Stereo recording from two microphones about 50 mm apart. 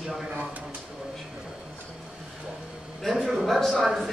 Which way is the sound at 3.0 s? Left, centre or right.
Centre.